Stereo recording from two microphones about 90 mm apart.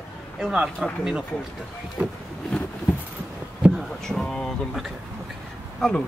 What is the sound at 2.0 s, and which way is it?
Speech, 15° right (ahead or behind).